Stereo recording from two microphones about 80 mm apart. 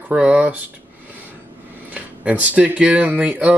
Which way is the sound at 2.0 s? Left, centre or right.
Centre.